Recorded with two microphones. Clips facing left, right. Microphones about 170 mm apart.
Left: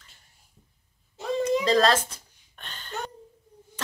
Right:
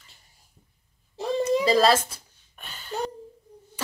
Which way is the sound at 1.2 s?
35° right (ahead or behind).